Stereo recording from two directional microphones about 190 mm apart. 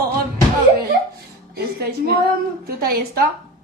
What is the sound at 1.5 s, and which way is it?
A woman's voice, 55° right (ahead or behind).